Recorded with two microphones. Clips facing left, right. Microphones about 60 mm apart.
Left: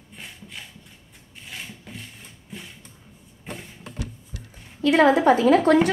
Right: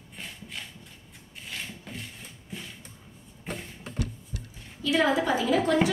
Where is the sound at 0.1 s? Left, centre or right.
Centre.